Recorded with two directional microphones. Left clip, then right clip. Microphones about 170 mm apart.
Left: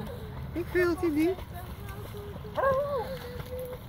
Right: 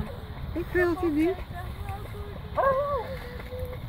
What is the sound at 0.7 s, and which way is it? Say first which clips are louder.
Speech: right 2 dB; 50° right (ahead or behind).